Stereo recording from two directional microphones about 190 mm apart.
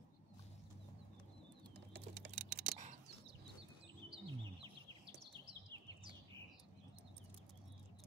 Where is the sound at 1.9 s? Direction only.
65° right (ahead or behind).